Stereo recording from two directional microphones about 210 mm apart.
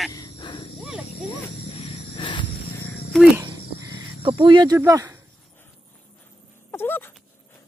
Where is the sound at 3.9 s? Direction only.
25° right (ahead or behind).